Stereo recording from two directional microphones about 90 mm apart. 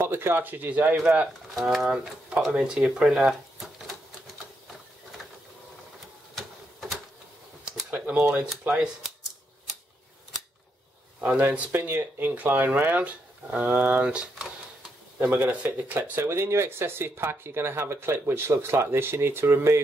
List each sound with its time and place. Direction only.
0.0 s speech: 25° right (ahead or behind); by 3.9 s 5° right (ahead or behind)
6.3 s a sound: centre (ahead or behind)
7.9 s typewriter: 10° right (ahead or behind)
8.7 s speech: 5° right (ahead or behind)
11.1 s speech: 20° right (ahead or behind)
15.1 s speech: 20° right (ahead or behind)